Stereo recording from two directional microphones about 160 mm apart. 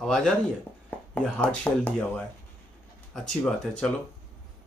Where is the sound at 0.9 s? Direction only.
10° left (ahead or behind).